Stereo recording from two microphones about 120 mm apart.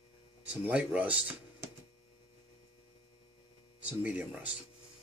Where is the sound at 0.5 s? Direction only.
10° right (ahead or behind).